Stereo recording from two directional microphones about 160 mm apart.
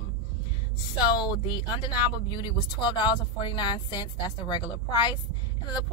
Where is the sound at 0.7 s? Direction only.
25° left (ahead or behind).